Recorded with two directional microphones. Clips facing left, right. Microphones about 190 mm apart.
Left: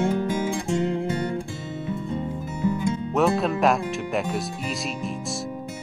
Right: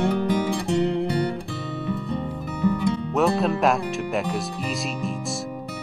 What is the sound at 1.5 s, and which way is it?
Music, 65° right (ahead or behind).